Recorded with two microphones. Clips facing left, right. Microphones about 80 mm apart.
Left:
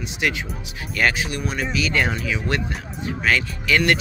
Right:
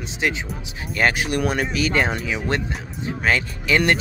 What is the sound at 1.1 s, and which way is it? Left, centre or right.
Speech, right.